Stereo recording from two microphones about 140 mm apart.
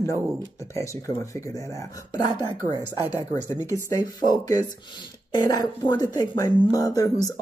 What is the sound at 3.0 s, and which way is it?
Speech, 20° right (ahead or behind).